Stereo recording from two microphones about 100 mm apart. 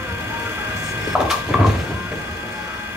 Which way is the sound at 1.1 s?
5° right (ahead or behind).